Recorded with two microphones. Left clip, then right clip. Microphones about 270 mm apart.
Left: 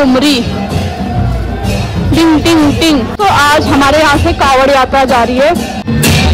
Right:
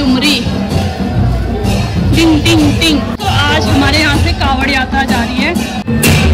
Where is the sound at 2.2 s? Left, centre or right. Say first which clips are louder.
Left 2 dB; centre.